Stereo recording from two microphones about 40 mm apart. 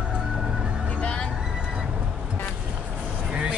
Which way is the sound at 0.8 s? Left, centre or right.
Left.